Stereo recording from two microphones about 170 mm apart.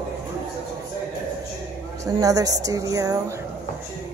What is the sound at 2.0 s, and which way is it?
A woman's voice, 20° right (ahead or behind).